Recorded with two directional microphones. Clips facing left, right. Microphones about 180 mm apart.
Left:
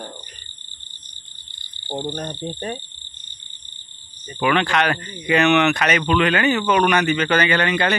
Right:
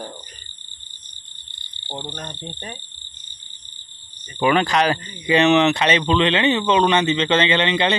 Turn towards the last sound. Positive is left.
turn(degrees=-20)  # may be behind; listen again after turning